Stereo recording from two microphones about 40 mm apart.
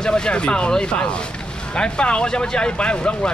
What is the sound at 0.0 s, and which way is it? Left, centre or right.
Speech, left.